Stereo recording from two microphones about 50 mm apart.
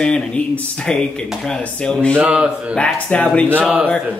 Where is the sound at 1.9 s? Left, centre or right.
Left.